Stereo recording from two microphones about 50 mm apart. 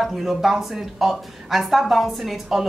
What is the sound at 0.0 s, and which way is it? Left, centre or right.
Speech, centre.